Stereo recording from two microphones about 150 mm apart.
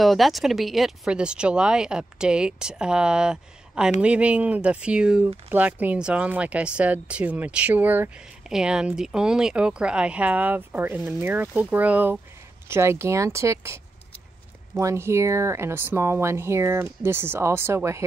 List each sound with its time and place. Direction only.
0.0 s speech: centre (ahead or behind); by 18.0 s 20° right (ahead or behind)